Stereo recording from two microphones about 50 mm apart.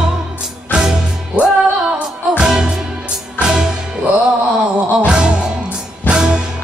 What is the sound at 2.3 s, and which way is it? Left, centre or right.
Music, centre.